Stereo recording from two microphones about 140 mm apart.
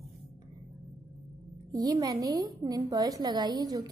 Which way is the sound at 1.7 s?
30° right (ahead or behind).